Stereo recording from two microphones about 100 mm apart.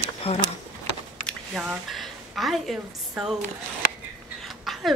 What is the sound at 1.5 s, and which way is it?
Speech, 10° right (ahead or behind).